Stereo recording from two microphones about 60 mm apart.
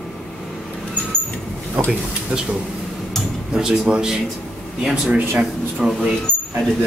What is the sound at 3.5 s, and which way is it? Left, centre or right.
Speech, centre.